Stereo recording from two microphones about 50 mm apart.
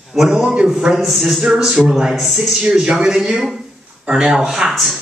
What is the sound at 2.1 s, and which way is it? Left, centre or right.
Speech, centre.